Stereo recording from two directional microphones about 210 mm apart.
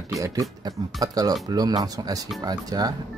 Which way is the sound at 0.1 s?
15° right (ahead or behind).